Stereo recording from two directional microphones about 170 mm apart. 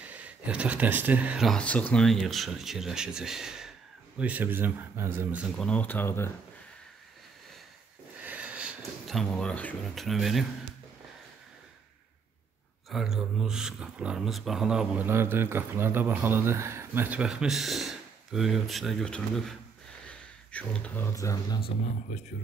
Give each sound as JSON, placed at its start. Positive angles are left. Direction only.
{"t": 0.0, "sound": "speech", "side_deg": -10}
{"t": 5.7, "sound": "speech", "side_deg": 10}
{"t": 8.2, "sound": "speech", "side_deg": -10}
{"t": 12.9, "sound": "speech", "side_deg": 0}
{"t": 21.5, "sound": "speech", "side_deg": 35}